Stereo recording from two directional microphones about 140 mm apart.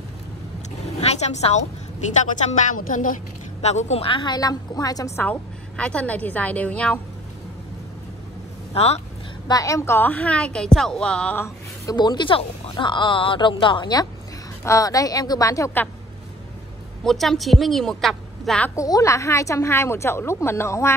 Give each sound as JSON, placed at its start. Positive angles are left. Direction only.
{"t": 0.9, "sound": "a woman's voice", "side_deg": 50}
{"t": 2.3, "sound": "a woman's voice", "side_deg": 65}
{"t": 3.6, "sound": "a woman's voice", "side_deg": 55}
{"t": 8.7, "sound": "speech", "side_deg": 50}
{"t": 9.5, "sound": "a woman's voice", "side_deg": 25}
{"t": 11.4, "sound": "a woman's voice", "side_deg": 25}
{"t": 17.0, "sound": "a woman's voice", "side_deg": 0}
{"t": 18.8, "sound": "a woman's voice", "side_deg": 25}